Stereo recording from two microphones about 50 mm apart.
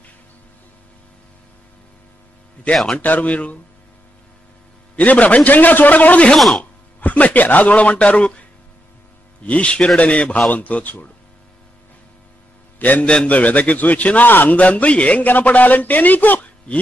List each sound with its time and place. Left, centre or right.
2.7 s a man's voice: centre
3.0 s a man's voice: left
4.9 s a man's voice: left
6.3 s speech: centre
6.6 s speech: left
9.4 s a man's voice: left
12.7 s a sound: left
13.2 s a man's voice: left